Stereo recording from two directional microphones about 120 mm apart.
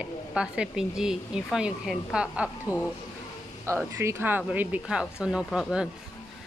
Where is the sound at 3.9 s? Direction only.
20° right (ahead or behind).